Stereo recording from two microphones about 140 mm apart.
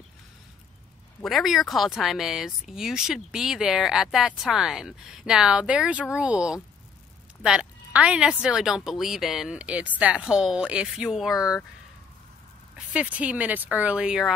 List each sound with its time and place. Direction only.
1.2 s speech: centre (ahead or behind)
11.3 s speech: 25° left (ahead or behind)
12.7 s speech: 10° right (ahead or behind)